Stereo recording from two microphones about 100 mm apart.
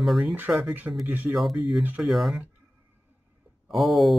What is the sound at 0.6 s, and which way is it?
Speech, 20° right (ahead or behind).